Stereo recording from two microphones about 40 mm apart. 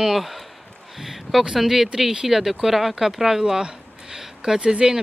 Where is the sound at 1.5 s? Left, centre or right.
Centre.